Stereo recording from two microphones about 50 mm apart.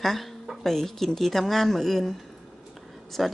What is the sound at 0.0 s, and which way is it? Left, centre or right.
Speech, centre.